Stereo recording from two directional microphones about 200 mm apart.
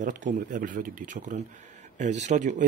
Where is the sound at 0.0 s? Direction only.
40° right (ahead or behind).